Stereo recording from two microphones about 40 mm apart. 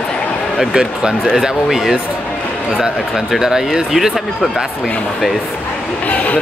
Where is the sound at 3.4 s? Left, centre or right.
Centre.